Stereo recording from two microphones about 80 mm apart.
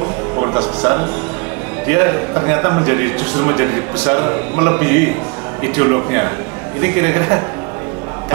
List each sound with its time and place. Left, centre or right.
0.6 s a man's voice: right